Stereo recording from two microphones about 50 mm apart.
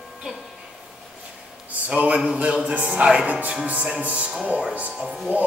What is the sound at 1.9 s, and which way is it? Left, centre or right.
Music, right.